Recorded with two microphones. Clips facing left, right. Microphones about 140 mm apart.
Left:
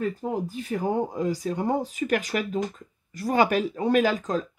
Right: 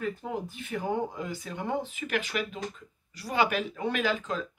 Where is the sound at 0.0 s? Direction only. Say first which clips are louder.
Left 5 dB; 40° left (ahead or behind).